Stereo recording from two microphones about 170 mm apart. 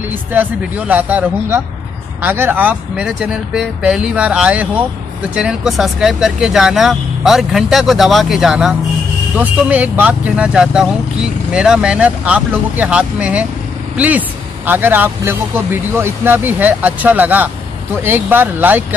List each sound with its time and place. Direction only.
0.3 s speech: 10° right (ahead or behind)